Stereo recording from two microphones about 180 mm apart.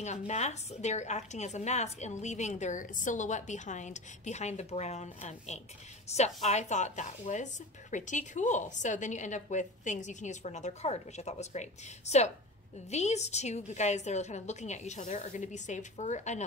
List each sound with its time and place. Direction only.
0.3 s speech: 40° left (ahead or behind)